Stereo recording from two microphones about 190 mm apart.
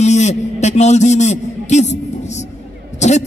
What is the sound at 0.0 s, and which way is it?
A man's voice, 35° left (ahead or behind).